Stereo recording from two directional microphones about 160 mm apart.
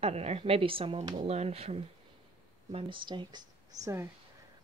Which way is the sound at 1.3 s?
40° right (ahead or behind).